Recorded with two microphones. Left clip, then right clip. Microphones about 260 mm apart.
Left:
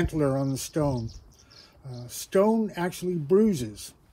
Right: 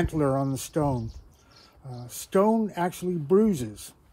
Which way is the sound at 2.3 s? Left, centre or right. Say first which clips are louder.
Even; centre.